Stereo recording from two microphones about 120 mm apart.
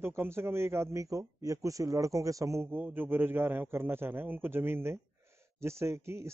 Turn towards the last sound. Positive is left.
turn(degrees=-25)  # may be behind; listen again after turning